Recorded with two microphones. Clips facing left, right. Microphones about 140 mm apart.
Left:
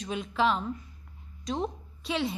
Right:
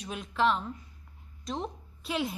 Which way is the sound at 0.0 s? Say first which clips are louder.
Left 1 dB; centre (ahead or behind).